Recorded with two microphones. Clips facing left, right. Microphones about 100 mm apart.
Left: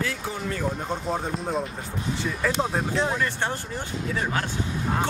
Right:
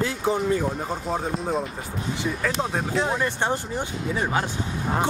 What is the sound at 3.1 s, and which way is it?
Speech, 20° right (ahead or behind).